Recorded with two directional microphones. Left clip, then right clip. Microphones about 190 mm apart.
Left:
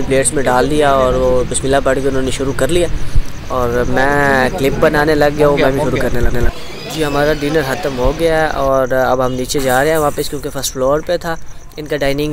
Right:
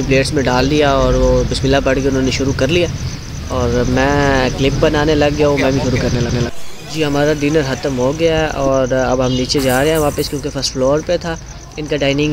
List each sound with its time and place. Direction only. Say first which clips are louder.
0.1 s speech: left 2 dB; 20° left (ahead or behind)
7.0 s speech: even; 20° left (ahead or behind)